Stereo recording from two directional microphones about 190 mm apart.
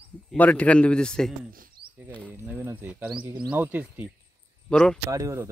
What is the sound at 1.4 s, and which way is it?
Speech, 45° right (ahead or behind).